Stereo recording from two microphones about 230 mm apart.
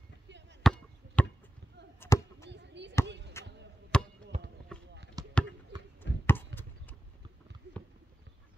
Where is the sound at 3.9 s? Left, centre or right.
Centre.